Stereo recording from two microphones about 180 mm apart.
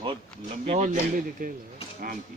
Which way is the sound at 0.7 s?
45° right (ahead or behind).